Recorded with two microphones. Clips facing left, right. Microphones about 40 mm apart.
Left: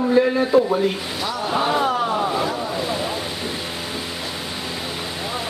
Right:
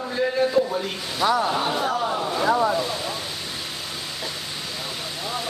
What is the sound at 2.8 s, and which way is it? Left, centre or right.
Ocean, centre.